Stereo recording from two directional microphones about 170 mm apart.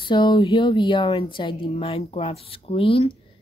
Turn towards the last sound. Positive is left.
turn(degrees=35)  # may be behind; listen again after turning